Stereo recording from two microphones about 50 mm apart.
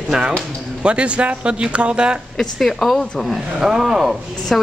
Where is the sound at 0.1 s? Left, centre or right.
Centre.